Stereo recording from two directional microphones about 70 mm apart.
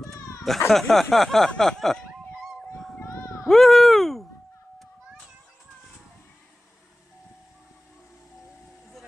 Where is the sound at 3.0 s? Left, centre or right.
Left.